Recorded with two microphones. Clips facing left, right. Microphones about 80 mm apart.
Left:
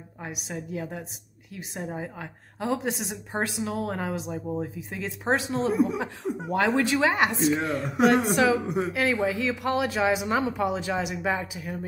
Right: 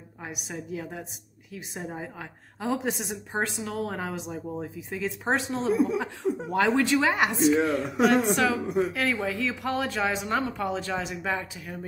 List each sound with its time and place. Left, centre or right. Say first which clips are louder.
0.2 s a woman's voice: left 1 dB; centre
5.8 s speech: even; centre
6.2 s a woman's voice: even; centre